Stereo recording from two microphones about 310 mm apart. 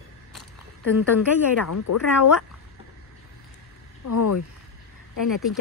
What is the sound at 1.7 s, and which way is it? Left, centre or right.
Speech, left.